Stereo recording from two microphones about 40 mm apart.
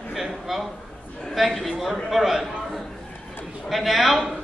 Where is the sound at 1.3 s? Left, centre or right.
Centre.